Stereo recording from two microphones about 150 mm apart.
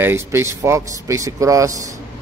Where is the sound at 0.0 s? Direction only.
15° right (ahead or behind).